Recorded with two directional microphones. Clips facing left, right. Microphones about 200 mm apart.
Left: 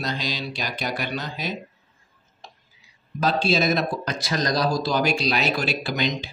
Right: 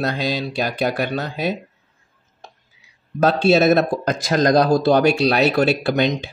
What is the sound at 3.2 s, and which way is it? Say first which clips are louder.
Speech: right 7 dB; 60° right (ahead or behind).